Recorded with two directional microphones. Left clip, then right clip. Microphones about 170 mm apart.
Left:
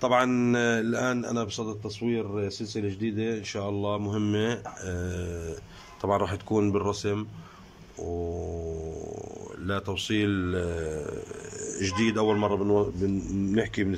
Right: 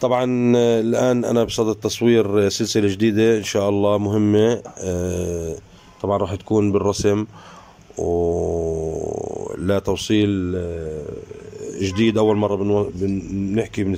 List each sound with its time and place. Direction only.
0.0 s a man's voice: 25° right (ahead or behind)
5.9 s a man's voice: 20° right (ahead or behind)
6.9 s a man's voice: 35° right (ahead or behind)
10.1 s a man's voice: 20° right (ahead or behind)